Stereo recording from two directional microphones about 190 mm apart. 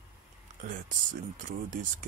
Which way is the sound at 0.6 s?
45° right (ahead or behind).